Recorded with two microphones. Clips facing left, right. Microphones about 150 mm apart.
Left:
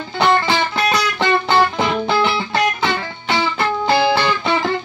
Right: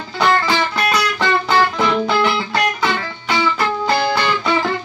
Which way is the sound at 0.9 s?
25° left (ahead or behind).